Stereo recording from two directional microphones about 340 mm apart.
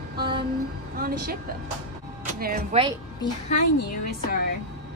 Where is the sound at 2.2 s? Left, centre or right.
Right.